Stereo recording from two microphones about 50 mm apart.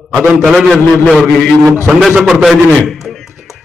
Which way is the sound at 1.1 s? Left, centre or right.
Centre.